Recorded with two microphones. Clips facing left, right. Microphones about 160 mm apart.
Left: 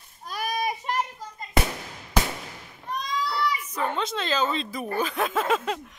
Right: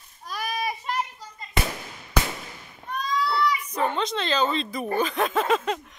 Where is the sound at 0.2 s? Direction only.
10° left (ahead or behind).